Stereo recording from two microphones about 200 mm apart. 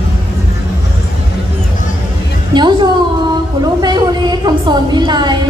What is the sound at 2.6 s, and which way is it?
A woman's voice, 20° right (ahead or behind).